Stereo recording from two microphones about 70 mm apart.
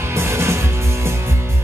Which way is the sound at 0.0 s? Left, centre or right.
Right.